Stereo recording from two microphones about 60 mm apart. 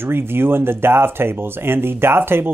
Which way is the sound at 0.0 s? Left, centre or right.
Right.